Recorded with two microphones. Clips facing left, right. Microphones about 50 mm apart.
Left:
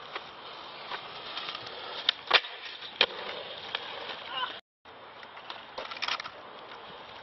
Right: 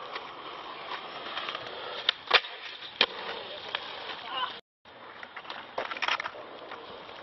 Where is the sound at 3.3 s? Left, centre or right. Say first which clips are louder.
Right 1 dB; centre.